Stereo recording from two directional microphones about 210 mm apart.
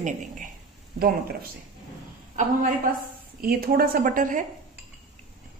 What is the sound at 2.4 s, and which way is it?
A woman's voice, 40° right (ahead or behind).